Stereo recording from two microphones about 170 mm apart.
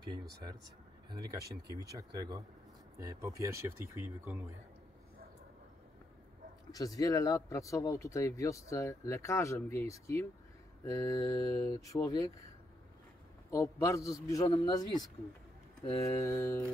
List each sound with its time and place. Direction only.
1.1 s speech: 20° right (ahead or behind)
6.7 s speech: 20° left (ahead or behind)
13.5 s speech: 20° left (ahead or behind)
14.4 s speech: 30° left (ahead or behind)
16.0 s speech: 20° left (ahead or behind)